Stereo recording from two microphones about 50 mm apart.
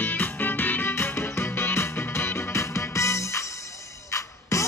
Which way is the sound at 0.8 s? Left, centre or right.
Left.